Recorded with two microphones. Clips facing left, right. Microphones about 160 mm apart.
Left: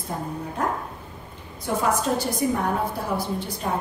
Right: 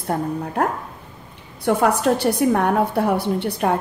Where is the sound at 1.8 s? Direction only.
70° right (ahead or behind).